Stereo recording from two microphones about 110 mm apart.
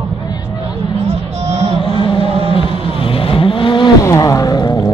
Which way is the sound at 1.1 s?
75° right (ahead or behind).